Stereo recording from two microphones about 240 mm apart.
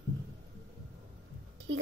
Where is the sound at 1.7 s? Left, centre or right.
Right.